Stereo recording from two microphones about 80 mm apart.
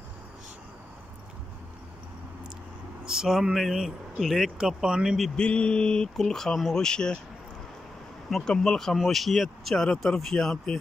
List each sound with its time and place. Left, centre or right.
3.1 s speech: centre
5.3 s speech: centre
8.3 s speech: centre